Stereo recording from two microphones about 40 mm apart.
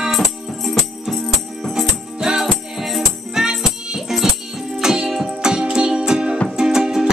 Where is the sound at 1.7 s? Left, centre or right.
Centre.